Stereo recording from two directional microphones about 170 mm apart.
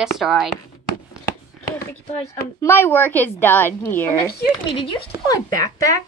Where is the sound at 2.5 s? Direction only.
15° left (ahead or behind).